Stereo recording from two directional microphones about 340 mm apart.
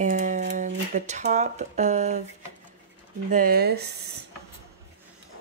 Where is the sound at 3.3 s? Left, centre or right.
Right.